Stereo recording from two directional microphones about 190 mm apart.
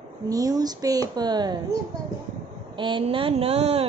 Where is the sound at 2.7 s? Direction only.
25° right (ahead or behind).